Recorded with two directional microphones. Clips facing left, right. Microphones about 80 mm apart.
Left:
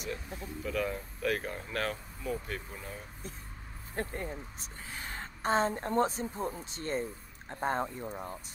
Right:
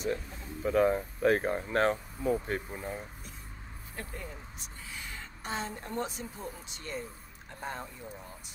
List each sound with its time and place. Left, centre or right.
0.6 s speech: right
3.9 s a woman's voice: left